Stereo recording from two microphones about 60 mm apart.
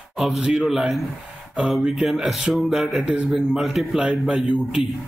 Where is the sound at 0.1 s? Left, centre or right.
Centre.